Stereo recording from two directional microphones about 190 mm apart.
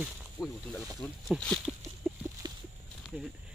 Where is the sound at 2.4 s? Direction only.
20° right (ahead or behind).